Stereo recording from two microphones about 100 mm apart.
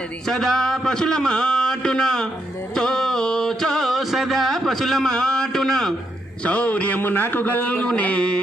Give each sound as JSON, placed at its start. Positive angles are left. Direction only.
{"t": 0.3, "sound": "a man's voice", "side_deg": 5}
{"t": 2.7, "sound": "music", "side_deg": 5}
{"t": 6.4, "sound": "a man's voice", "side_deg": 15}